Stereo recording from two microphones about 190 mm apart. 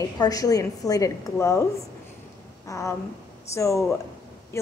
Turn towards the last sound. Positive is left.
turn(degrees=15)  # may be behind; listen again after turning